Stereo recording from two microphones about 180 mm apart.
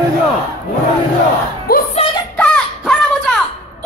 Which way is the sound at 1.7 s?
55° left (ahead or behind).